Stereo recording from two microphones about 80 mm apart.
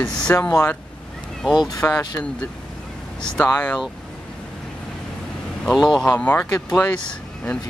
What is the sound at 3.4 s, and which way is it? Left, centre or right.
Speech, left.